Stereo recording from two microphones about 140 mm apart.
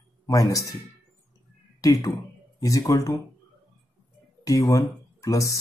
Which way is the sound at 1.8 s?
25° left (ahead or behind).